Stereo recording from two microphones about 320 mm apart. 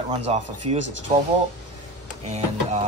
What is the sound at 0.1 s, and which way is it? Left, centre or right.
Speech, centre.